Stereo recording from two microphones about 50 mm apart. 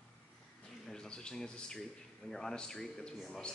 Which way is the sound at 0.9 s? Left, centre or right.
Centre.